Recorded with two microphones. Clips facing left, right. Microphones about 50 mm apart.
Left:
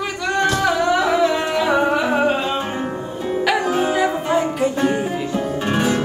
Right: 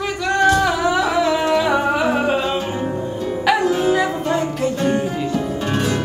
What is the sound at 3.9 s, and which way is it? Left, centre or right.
Music, centre.